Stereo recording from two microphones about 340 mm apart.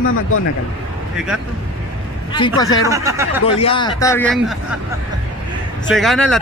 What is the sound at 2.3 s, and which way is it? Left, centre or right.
Speech, centre.